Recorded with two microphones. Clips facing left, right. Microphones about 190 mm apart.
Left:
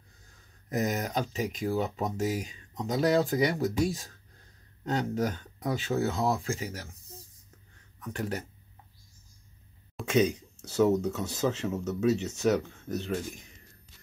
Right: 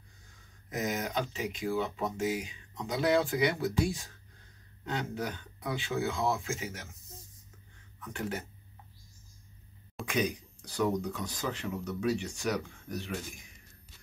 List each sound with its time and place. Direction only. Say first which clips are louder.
0.7 s speech: left 3 dB; 40° left (ahead or behind)
8.0 s speech: left 3 dB; 40° left (ahead or behind)
10.0 s speech: left 6 dB; 25° left (ahead or behind)